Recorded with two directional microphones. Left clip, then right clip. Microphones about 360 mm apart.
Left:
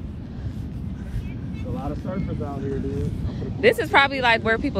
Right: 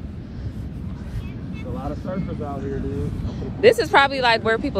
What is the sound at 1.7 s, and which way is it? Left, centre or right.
Speech, centre.